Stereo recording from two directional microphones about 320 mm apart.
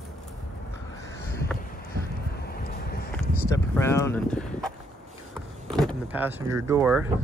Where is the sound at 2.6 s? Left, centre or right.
Left.